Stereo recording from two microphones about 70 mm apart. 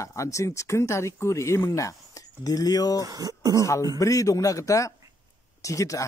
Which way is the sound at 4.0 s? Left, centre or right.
Left.